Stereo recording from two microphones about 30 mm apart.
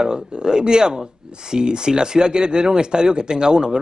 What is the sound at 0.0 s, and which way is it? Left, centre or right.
Speech, right.